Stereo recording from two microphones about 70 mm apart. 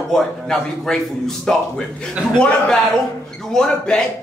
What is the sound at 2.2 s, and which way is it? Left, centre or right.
Speech, centre.